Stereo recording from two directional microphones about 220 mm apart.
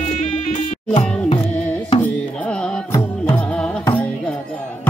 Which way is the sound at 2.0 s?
5° left (ahead or behind).